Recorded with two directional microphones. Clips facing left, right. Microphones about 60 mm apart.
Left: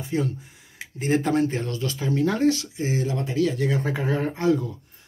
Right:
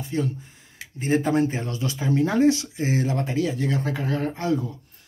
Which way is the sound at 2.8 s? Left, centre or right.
Right.